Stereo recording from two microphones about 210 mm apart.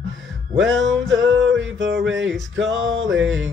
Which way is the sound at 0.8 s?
60° right (ahead or behind).